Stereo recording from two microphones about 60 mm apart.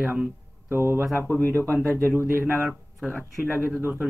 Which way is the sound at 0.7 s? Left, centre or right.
Right.